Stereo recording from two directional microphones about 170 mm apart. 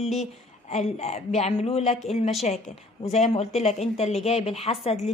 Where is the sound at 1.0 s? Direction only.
40° left (ahead or behind).